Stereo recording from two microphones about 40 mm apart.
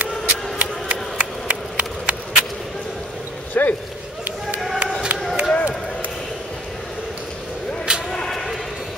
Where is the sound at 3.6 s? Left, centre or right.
Left.